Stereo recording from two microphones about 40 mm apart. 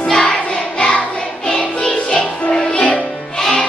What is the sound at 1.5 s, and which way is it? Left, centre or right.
Music, centre.